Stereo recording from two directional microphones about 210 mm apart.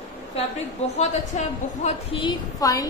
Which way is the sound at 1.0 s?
30° left (ahead or behind).